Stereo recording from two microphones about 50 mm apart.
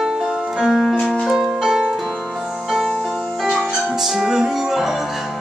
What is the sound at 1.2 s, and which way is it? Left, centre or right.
Music, centre.